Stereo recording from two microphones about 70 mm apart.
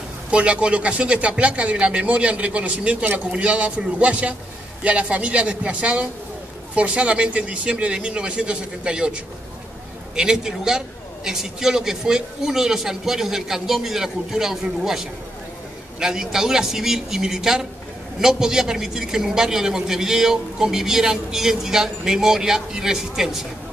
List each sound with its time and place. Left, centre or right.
0.3 s speech: centre